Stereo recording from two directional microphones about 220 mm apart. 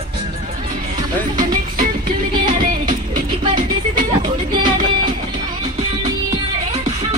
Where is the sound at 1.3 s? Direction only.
35° right (ahead or behind).